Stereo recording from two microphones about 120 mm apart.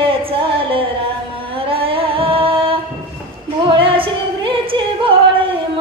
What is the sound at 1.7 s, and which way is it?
Music, 50° right (ahead or behind).